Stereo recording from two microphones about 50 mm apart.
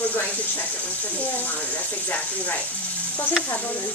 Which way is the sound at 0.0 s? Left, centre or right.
Left.